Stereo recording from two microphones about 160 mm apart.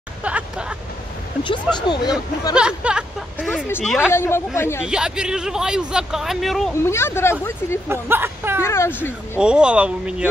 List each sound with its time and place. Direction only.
0.2 s hubbub: 5° right (ahead or behind)
1.8 s speech: 25° left (ahead or behind)
2.5 s speech: 5° right (ahead or behind)
4.1 s speech: 15° left (ahead or behind)
4.8 s speech: 5° right (ahead or behind)
6.7 s speech: 15° left (ahead or behind)
7.9 s speech: 15° right (ahead or behind)
8.6 s speech: 15° left (ahead or behind)
9.4 s speech: 5° right (ahead or behind)